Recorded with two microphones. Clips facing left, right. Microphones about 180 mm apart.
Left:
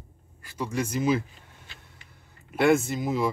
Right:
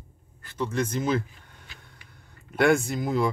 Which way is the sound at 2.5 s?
Centre (ahead or behind).